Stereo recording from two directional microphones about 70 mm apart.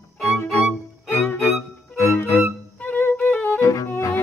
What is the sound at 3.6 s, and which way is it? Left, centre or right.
Music, left.